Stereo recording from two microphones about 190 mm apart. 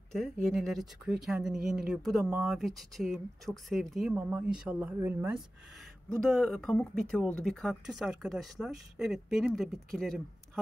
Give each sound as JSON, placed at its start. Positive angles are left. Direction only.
{"t": 0.1, "sound": "speech", "side_deg": 0}
{"t": 6.2, "sound": "speech", "side_deg": 5}